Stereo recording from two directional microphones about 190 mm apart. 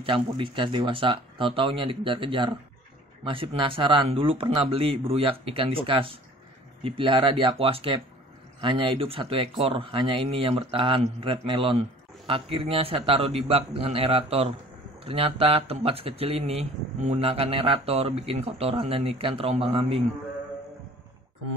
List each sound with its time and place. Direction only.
0.0 s a man's voice: 25° right (ahead or behind)